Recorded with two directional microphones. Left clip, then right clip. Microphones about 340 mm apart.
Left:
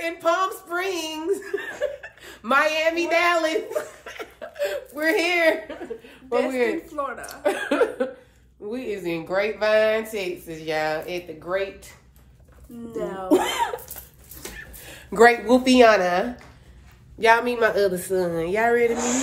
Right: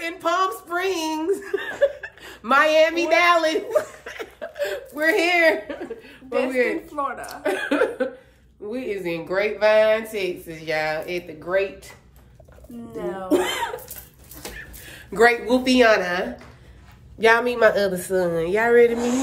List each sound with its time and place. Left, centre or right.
0.0 s speech: centre
4.0 s chuckle: centre
6.5 s speech: centre
6.9 s speech: centre
7.2 s speech: centre
12.9 s speech: centre
13.3 s speech: centre
17.2 s speech: centre